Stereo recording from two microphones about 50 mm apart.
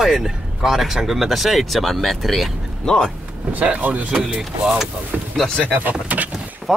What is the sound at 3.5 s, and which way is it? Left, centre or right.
Speech, right.